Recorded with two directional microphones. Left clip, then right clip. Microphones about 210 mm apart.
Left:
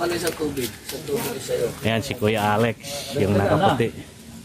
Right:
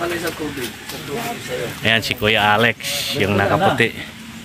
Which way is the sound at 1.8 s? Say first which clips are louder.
Right 6 dB; 10° left (ahead or behind).